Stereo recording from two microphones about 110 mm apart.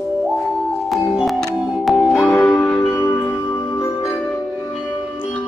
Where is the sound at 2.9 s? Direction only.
25° left (ahead or behind).